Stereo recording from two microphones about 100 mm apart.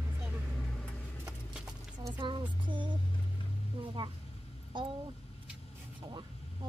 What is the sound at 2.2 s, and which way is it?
Music, 55° right (ahead or behind).